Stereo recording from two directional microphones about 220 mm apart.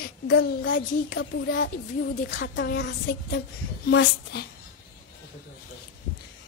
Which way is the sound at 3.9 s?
50° left (ahead or behind).